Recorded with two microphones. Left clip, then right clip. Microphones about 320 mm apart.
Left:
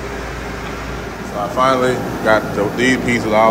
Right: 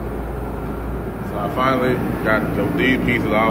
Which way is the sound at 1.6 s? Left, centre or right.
Centre.